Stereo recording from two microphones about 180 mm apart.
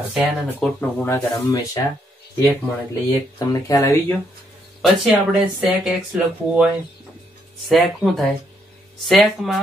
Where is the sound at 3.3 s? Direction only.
20° left (ahead or behind).